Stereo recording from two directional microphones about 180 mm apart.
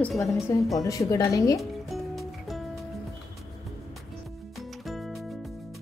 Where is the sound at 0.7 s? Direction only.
20° left (ahead or behind).